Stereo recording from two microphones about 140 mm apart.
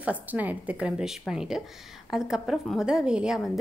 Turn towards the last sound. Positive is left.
turn(degrees=0)  # may be behind; listen again after turning